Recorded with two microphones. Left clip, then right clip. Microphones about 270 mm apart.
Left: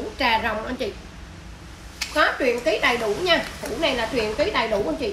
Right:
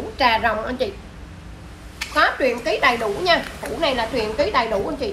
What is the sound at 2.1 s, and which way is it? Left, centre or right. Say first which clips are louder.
A woman's voice: right 2 dB; centre.